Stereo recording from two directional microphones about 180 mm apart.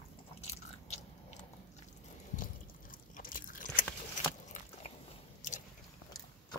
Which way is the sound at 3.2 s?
50° left (ahead or behind).